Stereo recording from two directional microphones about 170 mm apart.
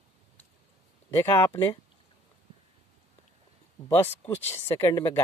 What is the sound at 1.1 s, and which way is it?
Speech, 15° left (ahead or behind).